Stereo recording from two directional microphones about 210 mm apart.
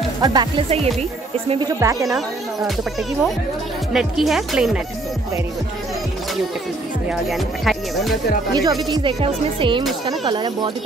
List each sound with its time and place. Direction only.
0.2 s speech: 20° right (ahead or behind)
0.7 s speech: 30° right (ahead or behind)
1.8 s speech: 15° right (ahead or behind)
2.0 s speech: centre (ahead or behind)
3.9 s speech: centre (ahead or behind)
7.1 s speech: centre (ahead or behind)
8.5 s speech: 20° right (ahead or behind)